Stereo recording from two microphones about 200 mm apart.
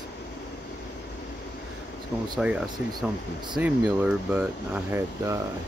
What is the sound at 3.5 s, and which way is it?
Speech, 5° right (ahead or behind).